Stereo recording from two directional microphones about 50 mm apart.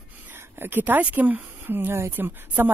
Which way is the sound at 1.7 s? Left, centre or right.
Right.